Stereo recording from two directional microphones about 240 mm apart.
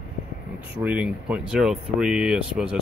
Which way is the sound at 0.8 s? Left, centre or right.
Centre.